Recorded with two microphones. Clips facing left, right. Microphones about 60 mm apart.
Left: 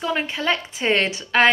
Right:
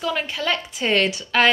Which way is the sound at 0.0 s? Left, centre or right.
Left.